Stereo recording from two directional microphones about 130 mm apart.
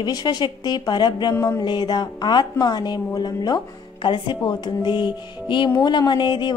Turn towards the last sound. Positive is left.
turn(degrees=35)  # may be behind; listen again after turning